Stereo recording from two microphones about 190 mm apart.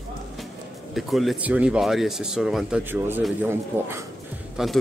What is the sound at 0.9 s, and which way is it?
A man's voice, centre (ahead or behind).